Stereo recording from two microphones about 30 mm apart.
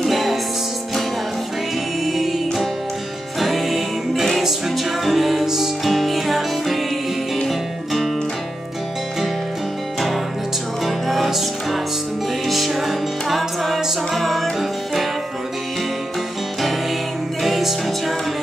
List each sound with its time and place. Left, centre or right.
0.0 s music: centre
2.0 s music: centre
5.9 s music: centre
10.9 s music: centre
17.4 s music: centre